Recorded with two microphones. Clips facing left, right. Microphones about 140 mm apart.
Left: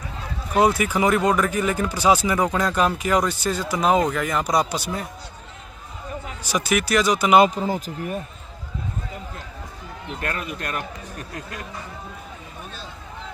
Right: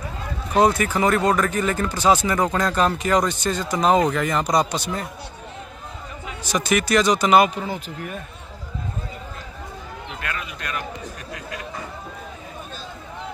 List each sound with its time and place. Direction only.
0.6 s speech: 10° left (ahead or behind)
6.4 s speech: 10° left (ahead or behind)
7.5 s speech: 40° left (ahead or behind)
10.0 s speech: 40° left (ahead or behind)